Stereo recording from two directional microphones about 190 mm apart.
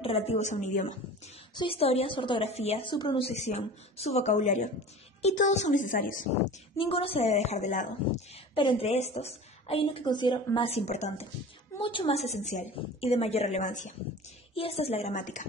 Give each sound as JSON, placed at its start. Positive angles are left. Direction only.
{"t": 0.0, "sound": "a woman's voice", "side_deg": 30}
{"t": 1.5, "sound": "a woman's voice", "side_deg": 25}
{"t": 6.8, "sound": "a woman's voice", "side_deg": 30}
{"t": 8.5, "sound": "a woman's voice", "side_deg": 30}
{"t": 14.5, "sound": "a woman's voice", "side_deg": 30}